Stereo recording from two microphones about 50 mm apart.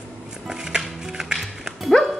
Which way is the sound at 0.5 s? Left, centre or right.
Centre.